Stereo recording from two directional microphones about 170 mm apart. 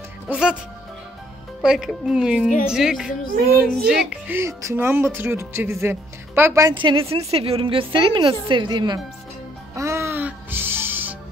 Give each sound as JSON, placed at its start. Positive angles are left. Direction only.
{"t": 0.3, "sound": "a woman's voice", "side_deg": -5}
{"t": 1.6, "sound": "a woman's voice", "side_deg": -5}
{"t": 9.8, "sound": "music", "side_deg": -15}